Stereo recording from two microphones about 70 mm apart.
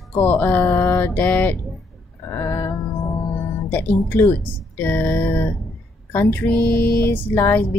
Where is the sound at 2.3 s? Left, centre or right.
Left.